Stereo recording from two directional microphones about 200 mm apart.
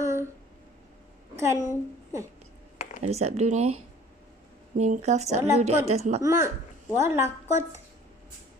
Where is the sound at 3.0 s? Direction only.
30° right (ahead or behind).